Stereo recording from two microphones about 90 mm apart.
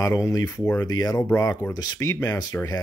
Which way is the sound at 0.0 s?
35° left (ahead or behind).